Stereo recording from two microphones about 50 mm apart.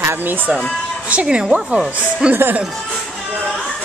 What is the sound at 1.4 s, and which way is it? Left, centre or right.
Speech, centre.